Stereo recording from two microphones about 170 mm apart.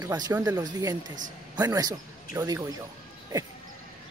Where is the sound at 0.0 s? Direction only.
20° right (ahead or behind).